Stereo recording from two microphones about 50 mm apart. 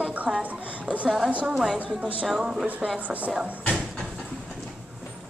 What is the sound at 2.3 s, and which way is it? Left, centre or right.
Speech, centre.